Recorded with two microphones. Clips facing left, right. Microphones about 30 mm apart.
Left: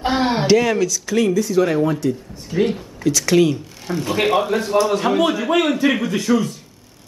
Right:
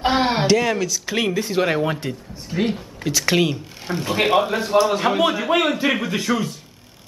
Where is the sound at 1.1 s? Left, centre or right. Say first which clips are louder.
Left 4 dB; right.